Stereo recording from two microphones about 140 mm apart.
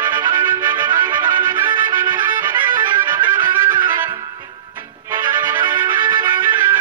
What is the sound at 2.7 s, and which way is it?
Music, 35° right (ahead or behind).